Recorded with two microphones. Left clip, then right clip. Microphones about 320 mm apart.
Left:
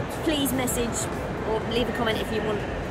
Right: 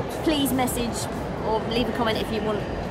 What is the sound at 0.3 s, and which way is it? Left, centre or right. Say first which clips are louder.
Speech: right 2 dB; centre.